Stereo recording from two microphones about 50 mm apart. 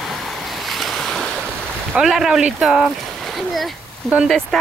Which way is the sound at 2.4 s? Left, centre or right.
Centre.